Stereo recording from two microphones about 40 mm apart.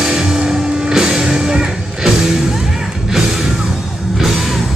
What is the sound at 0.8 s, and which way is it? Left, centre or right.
Music, centre.